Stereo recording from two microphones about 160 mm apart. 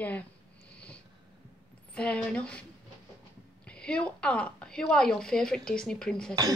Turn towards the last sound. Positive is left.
turn(degrees=5)  # may be behind; listen again after turning